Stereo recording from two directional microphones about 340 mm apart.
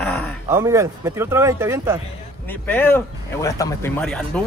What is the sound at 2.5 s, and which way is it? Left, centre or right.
Speech, centre.